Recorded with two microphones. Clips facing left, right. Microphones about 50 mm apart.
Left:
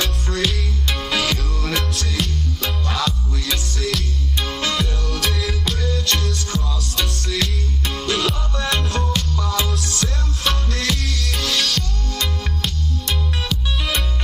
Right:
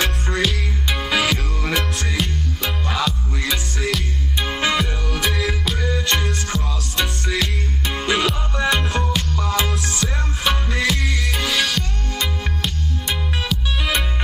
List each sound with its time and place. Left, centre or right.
0.4 s music: centre
9.3 s music: right
9.9 s music: centre